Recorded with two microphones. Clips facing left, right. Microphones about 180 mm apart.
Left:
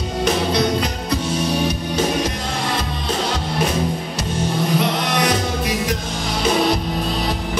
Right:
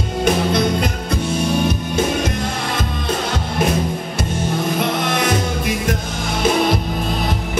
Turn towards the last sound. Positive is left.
turn(degrees=-50)  # may be behind; listen again after turning